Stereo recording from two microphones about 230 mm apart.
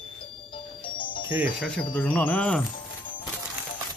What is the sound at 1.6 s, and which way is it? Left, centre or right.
Speech, centre.